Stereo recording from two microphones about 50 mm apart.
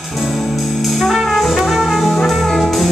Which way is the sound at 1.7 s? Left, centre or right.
Centre.